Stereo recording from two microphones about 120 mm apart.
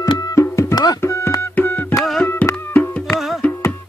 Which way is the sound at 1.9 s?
Centre (ahead or behind).